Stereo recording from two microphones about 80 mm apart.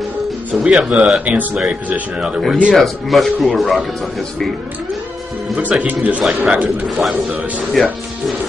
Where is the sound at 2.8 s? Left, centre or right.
Centre.